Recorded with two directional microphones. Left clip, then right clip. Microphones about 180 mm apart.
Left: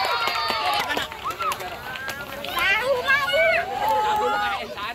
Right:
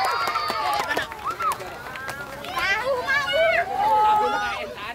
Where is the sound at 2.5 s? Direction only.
40° left (ahead or behind).